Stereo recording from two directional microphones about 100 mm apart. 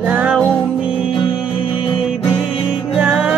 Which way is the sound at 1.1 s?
55° left (ahead or behind).